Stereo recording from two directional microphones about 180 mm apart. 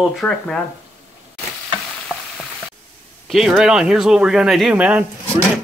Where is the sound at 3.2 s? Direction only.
Centre (ahead or behind).